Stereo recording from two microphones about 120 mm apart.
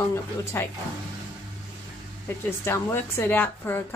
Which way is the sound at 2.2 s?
20° left (ahead or behind).